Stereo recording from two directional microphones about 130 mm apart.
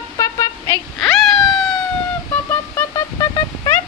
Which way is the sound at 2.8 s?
25° left (ahead or behind).